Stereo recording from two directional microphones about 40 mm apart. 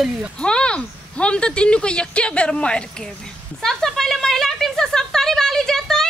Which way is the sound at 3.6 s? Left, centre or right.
Centre.